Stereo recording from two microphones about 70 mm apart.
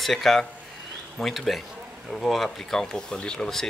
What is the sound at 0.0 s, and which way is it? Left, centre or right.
Speech, centre.